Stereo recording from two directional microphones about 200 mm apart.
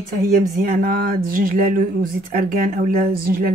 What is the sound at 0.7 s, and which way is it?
A woman's voice, 45° right (ahead or behind).